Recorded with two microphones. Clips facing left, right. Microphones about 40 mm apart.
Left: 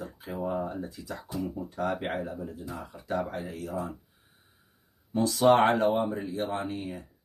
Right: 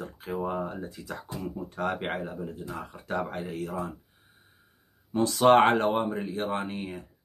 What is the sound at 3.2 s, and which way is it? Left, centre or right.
Speech, right.